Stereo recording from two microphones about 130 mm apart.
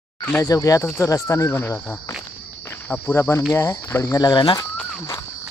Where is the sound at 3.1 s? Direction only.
20° left (ahead or behind).